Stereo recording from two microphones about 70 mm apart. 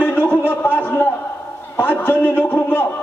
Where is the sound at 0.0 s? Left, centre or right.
Left.